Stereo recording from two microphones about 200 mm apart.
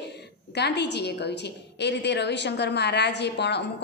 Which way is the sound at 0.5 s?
55° left (ahead or behind).